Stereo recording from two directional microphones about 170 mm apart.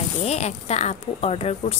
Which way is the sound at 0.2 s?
40° left (ahead or behind).